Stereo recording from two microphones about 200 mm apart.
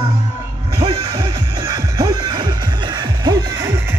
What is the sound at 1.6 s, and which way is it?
Music, 20° right (ahead or behind).